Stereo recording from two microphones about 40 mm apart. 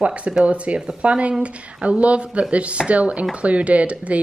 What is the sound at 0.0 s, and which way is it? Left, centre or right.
Speech, right.